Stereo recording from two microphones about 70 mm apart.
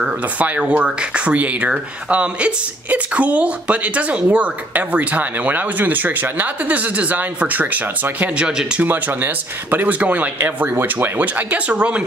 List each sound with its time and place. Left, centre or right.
0.0 s speech: right
8.4 s speech: centre
8.8 s speech: right